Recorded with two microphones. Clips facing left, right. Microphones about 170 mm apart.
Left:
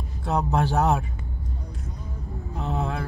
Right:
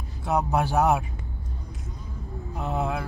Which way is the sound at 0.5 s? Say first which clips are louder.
Even; 15° right (ahead or behind).